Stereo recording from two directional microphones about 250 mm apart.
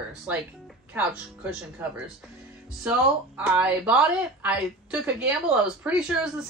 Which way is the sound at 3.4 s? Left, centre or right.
Centre.